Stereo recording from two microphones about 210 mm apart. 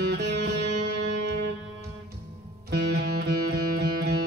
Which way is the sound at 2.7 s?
55° right (ahead or behind).